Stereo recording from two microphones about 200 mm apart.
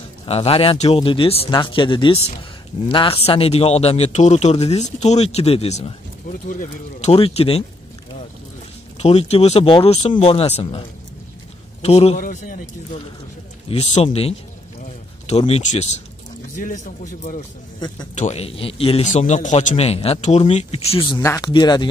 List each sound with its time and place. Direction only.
0.3 s a man's voice: 30° left (ahead or behind)
8.9 s a man's voice: 30° left (ahead or behind)
12.2 s a man's voice: 40° left (ahead or behind)
21.2 s speech: 15° left (ahead or behind)